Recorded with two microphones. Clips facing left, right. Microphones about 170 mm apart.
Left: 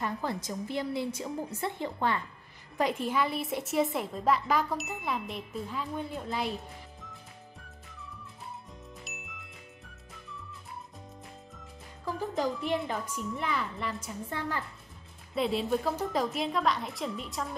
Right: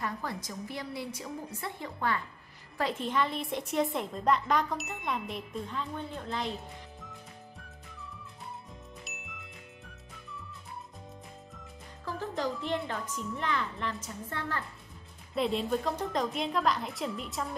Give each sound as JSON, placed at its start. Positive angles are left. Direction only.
{"t": 0.0, "sound": "a woman's voice", "side_deg": 25}
{"t": 2.8, "sound": "a woman's voice", "side_deg": 10}
{"t": 9.0, "sound": "music", "side_deg": 0}
{"t": 12.0, "sound": "a woman's voice", "side_deg": 15}